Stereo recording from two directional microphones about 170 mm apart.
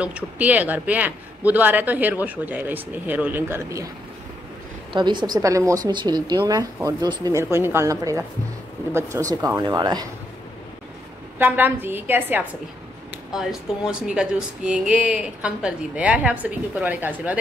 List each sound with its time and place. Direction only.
0.0 s speech: 10° right (ahead or behind)
5.2 s speech: 20° right (ahead or behind)
11.3 s speech: 10° right (ahead or behind)